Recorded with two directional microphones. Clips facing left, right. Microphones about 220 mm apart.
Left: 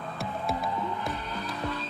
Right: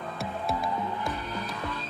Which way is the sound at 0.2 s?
Centre (ahead or behind).